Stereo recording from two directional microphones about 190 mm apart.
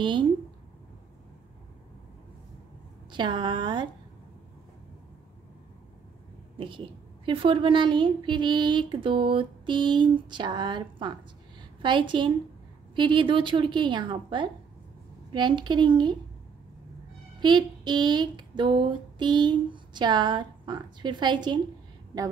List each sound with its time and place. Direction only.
0.0 s a woman's voice: 25° right (ahead or behind)
3.1 s a woman's voice: 25° right (ahead or behind)
6.6 s a woman's voice: 25° right (ahead or behind)
17.4 s a woman's voice: 25° right (ahead or behind)